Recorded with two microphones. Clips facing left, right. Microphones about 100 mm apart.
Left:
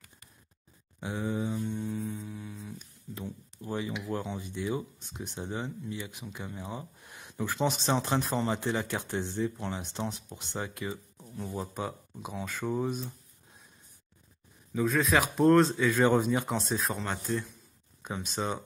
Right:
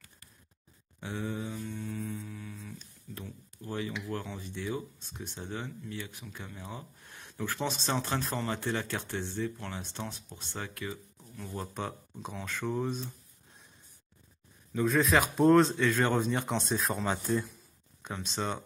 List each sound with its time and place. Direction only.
1.0 s mantra: 15° left (ahead or behind)
2.5 s speech: 10° left (ahead or behind)
14.7 s speech: centre (ahead or behind)
15.9 s speech: 10° left (ahead or behind); by 17.5 s 5° right (ahead or behind)
18.3 s speech: 5° left (ahead or behind)